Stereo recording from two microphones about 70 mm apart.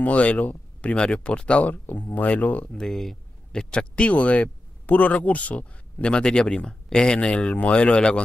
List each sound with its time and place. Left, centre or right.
0.0 s speech: left
2.8 s speech: centre